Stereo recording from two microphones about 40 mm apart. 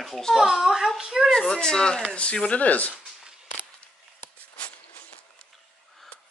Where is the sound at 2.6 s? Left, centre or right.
Left.